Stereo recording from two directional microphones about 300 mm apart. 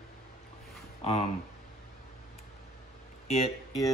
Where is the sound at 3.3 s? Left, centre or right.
Left.